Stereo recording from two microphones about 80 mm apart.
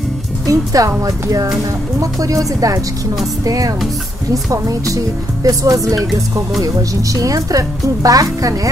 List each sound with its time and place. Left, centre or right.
0.5 s speech: right